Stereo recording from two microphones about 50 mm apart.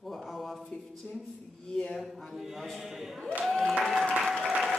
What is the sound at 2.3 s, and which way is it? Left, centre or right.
Speech, centre.